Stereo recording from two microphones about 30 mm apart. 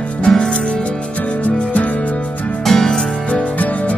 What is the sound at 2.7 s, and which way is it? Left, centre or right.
Music, centre.